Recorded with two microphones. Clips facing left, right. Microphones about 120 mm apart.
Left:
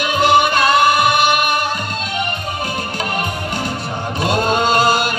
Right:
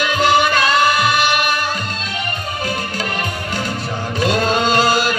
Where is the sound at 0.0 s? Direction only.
55° left (ahead or behind).